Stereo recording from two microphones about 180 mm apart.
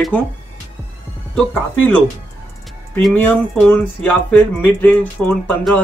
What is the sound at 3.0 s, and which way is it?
Speech, 10° left (ahead or behind).